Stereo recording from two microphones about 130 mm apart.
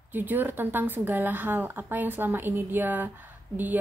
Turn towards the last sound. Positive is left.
turn(degrees=-15)  # may be behind; listen again after turning